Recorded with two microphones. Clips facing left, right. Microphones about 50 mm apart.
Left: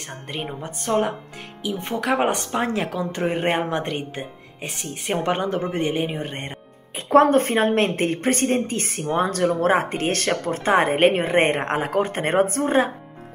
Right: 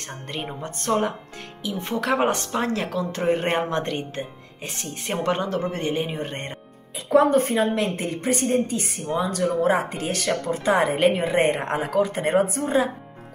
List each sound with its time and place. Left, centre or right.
0.3 s speech: centre
1.6 s speech: left
7.1 s a woman's voice: left